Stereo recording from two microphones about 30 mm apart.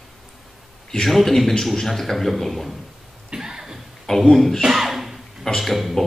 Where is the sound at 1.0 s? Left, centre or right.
Centre.